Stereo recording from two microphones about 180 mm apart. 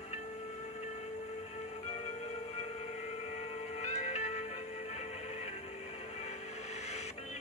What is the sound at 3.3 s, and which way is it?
Music, 40° left (ahead or behind).